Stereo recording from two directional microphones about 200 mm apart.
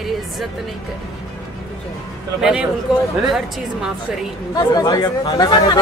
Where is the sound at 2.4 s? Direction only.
5° right (ahead or behind).